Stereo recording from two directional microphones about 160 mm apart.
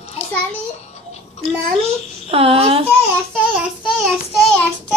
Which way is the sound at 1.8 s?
40° right (ahead or behind).